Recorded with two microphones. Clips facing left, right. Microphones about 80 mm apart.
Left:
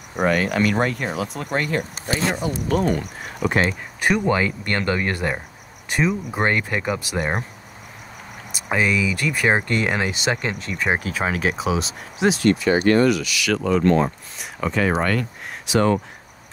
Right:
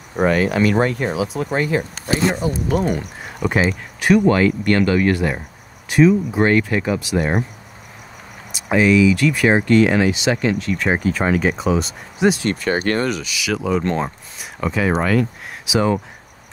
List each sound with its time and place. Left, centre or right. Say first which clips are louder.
0.1 s speech: right 3 dB; centre
2.7 s speech: even; centre
3.0 s speech: right 1 dB; centre
5.1 s speech: right 4 dB; centre
8.6 s speech: right 7 dB; centre
12.4 s speech: left 3 dB; right
13.5 s speech: even; centre
13.8 s speech: left 4 dB; centre
14.4 s speech: right 1 dB; centre